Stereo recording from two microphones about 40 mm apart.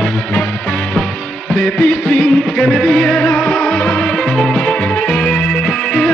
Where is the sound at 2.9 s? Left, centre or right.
Left.